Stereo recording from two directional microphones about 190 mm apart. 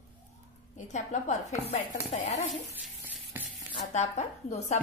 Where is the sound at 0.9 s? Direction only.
40° left (ahead or behind).